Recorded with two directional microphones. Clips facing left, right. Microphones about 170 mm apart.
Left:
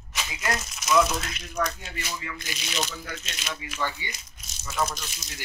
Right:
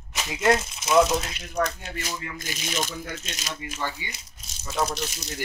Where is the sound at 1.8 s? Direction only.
45° right (ahead or behind).